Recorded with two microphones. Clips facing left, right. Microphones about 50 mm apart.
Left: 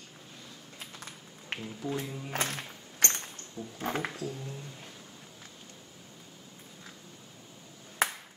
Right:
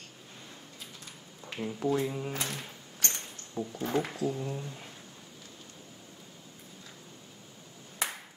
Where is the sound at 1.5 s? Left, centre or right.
Left.